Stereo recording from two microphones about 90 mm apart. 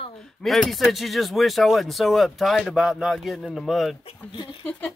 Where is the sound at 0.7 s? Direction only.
Centre (ahead or behind).